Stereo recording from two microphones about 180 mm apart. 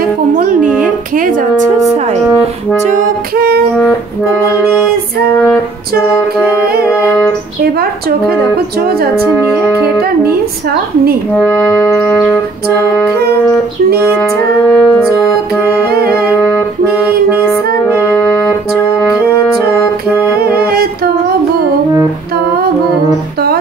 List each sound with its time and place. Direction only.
0.4 s music: 45° right (ahead or behind)
1.6 s music: 15° right (ahead or behind)
9.4 s music: 15° right (ahead or behind)
12.1 s music: 5° left (ahead or behind)
14.7 s music: 10° left (ahead or behind)
16.4 s music: centre (ahead or behind)
18.1 s music: centre (ahead or behind)